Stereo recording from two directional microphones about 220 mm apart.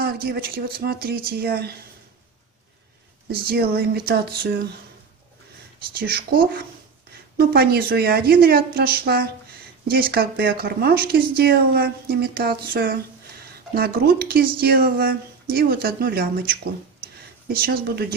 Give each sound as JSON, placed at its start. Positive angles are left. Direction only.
{"t": 0.0, "sound": "speech", "side_deg": -45}
{"t": 3.3, "sound": "speech", "side_deg": -45}
{"t": 5.9, "sound": "speech", "side_deg": -45}
{"t": 7.3, "sound": "speech", "side_deg": -45}